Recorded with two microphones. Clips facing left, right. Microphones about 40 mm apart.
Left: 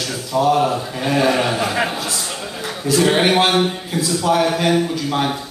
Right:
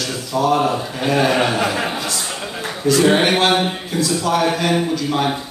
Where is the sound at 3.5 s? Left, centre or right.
Centre.